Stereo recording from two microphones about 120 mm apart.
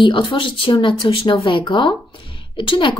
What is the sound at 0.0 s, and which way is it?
Speech, 40° left (ahead or behind).